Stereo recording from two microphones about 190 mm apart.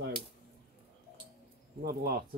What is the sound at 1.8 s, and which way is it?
Speech, 55° right (ahead or behind).